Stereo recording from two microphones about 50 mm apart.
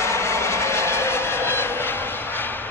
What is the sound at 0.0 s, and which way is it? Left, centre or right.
Train, left.